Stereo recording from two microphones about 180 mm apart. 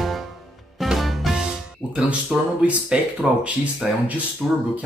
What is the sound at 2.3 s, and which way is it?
A man's voice, 5° right (ahead or behind).